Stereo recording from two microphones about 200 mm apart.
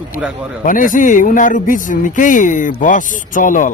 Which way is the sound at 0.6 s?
40° left (ahead or behind).